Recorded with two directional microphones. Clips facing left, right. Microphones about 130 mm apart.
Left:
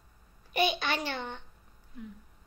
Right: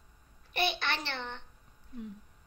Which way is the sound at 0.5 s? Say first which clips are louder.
Left 4 dB; 10° left (ahead or behind).